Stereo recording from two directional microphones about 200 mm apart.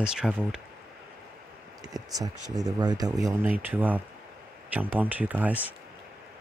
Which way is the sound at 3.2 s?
10° right (ahead or behind).